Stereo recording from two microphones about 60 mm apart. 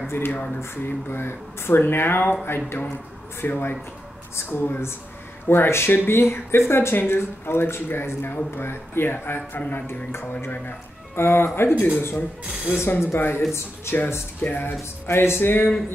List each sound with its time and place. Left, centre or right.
0.1 s speech: left
11.1 s speech: left
12.4 s speech: centre
12.8 s speech: left
14.8 s speech: left